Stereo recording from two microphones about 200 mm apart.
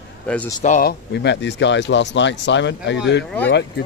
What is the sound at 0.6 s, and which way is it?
Speech, 45° left (ahead or behind).